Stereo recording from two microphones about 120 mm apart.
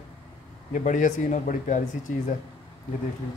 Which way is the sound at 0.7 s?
90° left.